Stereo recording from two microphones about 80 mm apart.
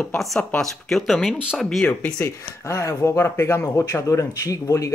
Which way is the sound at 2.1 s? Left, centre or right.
Left.